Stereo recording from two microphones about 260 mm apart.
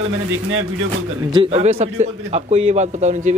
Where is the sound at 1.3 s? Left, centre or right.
Right.